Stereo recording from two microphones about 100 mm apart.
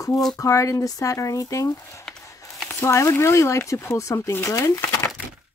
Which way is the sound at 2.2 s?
30° left (ahead or behind).